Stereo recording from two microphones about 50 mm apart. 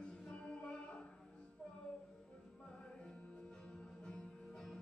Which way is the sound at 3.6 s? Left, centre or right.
Centre.